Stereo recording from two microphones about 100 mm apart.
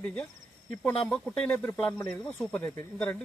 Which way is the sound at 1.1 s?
10° left (ahead or behind).